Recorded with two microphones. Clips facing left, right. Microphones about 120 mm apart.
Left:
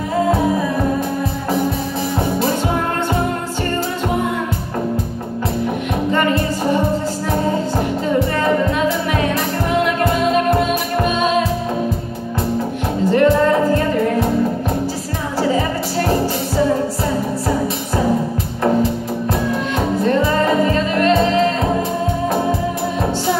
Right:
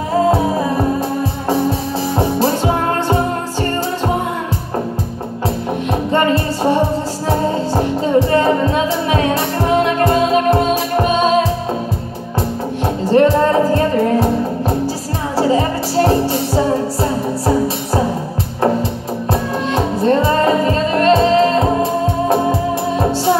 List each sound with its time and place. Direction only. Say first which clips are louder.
2.1 s music: right 3 dB; 30° right (ahead or behind)
6.1 s music: right 3 dB; 30° right (ahead or behind)
13.0 s music: right 1 dB; 30° right (ahead or behind)
15.3 s music: right 3 dB; 30° right (ahead or behind)
19.7 s music: right 4 dB; 30° right (ahead or behind)